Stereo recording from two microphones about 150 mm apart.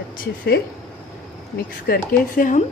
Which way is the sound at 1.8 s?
70° left (ahead or behind).